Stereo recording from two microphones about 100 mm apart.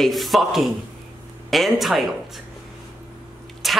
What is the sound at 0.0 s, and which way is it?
A woman's voice, centre (ahead or behind).